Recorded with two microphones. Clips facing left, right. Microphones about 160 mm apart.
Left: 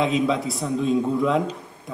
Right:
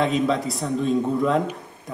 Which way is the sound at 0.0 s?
Centre (ahead or behind).